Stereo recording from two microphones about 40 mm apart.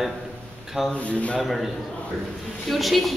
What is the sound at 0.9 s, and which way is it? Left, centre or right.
Speech, left.